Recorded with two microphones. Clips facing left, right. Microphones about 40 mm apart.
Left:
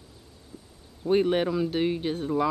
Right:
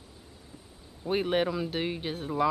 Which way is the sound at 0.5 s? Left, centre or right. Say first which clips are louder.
Left 6 dB; centre.